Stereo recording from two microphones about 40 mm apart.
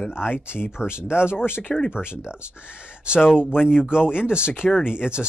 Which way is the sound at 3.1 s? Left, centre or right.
Centre.